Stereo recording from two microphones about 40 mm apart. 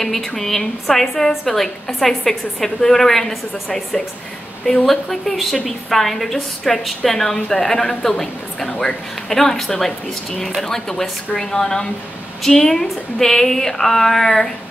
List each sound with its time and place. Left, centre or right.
0.0 s a woman's voice: centre
7.3 s a woman's voice: left
7.6 s a woman's voice: centre